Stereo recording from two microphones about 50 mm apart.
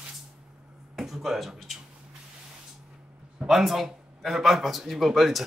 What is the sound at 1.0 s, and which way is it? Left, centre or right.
Speech, centre.